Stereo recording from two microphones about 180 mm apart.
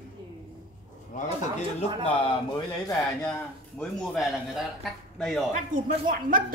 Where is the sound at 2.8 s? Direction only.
20° left (ahead or behind).